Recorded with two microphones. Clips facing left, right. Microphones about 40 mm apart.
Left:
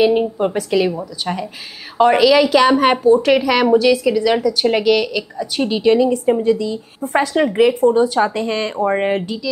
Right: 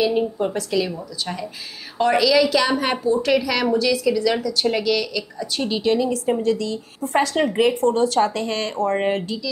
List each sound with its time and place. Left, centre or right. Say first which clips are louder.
0.0 s a woman's voice: left 5 dB; left
5.7 s a woman's voice: left 6 dB; centre